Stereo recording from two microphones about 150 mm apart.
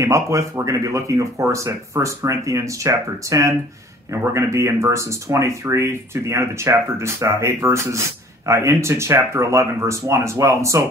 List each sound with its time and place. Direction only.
0.0 s speech: 20° right (ahead or behind)